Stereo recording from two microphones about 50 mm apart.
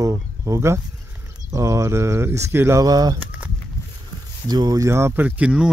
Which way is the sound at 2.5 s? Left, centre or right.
Right.